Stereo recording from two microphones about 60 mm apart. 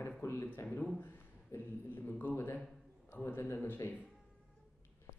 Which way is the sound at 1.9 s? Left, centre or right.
Left.